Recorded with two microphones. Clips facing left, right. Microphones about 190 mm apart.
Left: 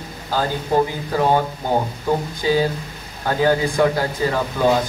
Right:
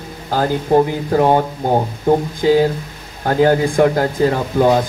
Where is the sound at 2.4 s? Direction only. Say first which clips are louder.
Right 5 dB; 55° right (ahead or behind).